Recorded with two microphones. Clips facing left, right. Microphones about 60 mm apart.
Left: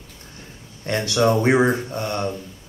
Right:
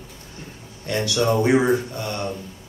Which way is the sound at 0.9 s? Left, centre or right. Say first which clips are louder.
Left 2 dB; left.